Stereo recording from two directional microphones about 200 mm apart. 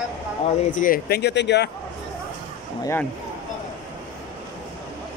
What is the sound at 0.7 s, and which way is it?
Speech, 45° left (ahead or behind).